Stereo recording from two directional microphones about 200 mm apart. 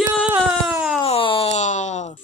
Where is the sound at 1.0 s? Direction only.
30° left (ahead or behind).